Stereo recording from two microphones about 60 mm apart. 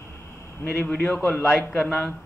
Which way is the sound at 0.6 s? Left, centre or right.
Left.